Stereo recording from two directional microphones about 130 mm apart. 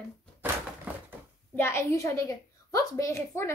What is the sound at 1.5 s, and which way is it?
A woman's voice, 20° left (ahead or behind).